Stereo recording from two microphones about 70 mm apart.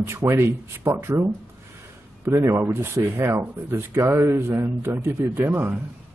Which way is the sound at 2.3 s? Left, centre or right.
Right.